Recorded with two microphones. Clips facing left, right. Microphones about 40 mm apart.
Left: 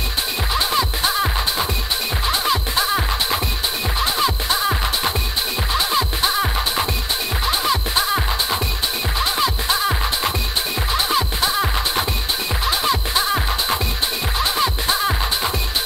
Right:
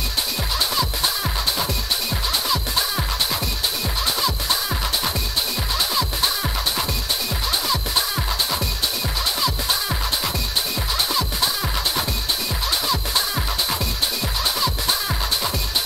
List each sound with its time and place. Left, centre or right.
0.6 s music: left